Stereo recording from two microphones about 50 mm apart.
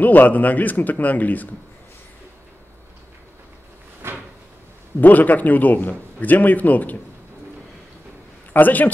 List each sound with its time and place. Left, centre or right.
0.0 s a man's voice: left
4.0 s cupboard open or close: right
5.0 s a man's voice: left
8.5 s a man's voice: left